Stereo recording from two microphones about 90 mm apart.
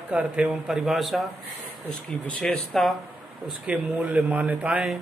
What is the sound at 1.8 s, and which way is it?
Speech, 10° left (ahead or behind).